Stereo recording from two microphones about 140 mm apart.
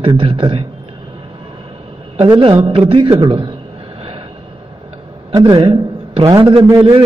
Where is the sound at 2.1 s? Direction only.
40° right (ahead or behind).